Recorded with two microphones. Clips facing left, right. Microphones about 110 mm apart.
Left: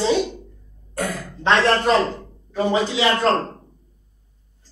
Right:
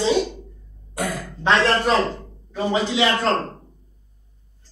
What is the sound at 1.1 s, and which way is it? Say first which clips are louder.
Speech: left 1 dB; 10° right (ahead or behind).